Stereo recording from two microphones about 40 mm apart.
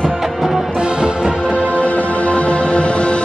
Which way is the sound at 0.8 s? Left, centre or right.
Right.